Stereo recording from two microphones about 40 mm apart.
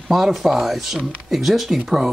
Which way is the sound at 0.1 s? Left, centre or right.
Centre.